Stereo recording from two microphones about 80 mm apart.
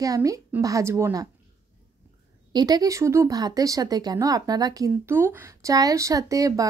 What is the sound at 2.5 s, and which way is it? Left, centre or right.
Speech, right.